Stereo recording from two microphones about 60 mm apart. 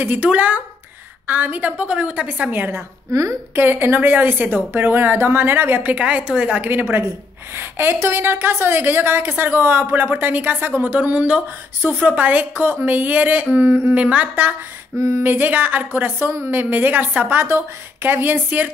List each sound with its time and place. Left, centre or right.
0.0 s speech: right
3.1 s a woman's voice: right
3.5 s a woman's voice: right
6.7 s a woman's voice: right
11.8 s a woman's voice: right
12.1 s speech: right
13.9 s speech: right
15.0 s a sound: right
15.2 s a woman's voice: right
16.2 s a sound: right
16.4 s a woman's voice: right